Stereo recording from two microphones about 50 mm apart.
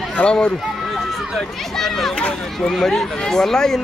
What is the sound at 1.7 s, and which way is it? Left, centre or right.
Speech, centre.